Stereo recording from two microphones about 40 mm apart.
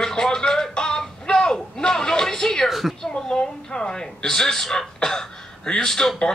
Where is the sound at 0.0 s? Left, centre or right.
Centre.